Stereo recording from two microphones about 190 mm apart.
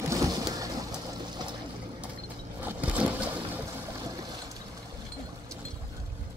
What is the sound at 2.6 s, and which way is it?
Boat, 10° right (ahead or behind).